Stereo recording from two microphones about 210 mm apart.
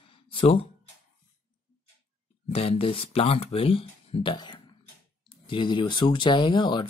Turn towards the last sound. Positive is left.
turn(degrees=20)  # may be behind; listen again after turning